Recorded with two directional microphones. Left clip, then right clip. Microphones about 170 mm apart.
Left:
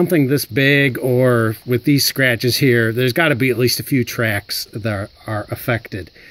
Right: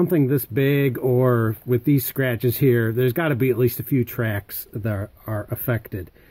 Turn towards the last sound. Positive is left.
turn(degrees=20)  # may be behind; listen again after turning